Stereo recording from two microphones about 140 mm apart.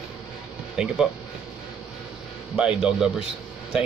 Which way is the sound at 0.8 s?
5° right (ahead or behind).